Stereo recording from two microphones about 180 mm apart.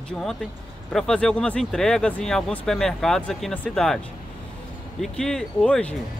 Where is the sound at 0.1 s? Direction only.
Centre (ahead or behind).